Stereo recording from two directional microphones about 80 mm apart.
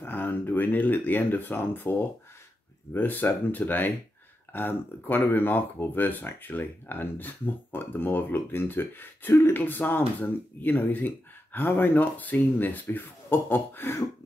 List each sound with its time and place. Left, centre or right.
0.0 s speech: left